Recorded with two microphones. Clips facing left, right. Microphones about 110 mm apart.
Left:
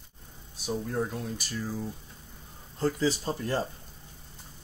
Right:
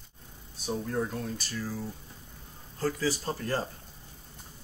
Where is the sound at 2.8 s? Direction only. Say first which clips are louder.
Left 3 dB; 20° left (ahead or behind).